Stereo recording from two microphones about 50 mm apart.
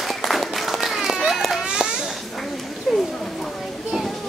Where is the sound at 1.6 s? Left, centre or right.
Centre.